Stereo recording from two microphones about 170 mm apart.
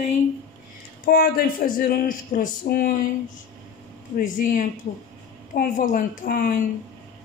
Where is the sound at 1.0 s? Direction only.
60° left (ahead or behind).